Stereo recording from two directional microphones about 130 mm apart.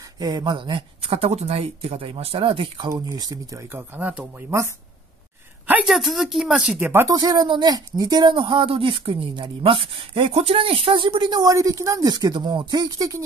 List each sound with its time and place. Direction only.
0.2 s speech: 30° right (ahead or behind)
2.9 s speech: 25° right (ahead or behind)
5.7 s a woman's voice: centre (ahead or behind)
6.9 s speech: 20° right (ahead or behind)
7.2 s speech: 30° right (ahead or behind)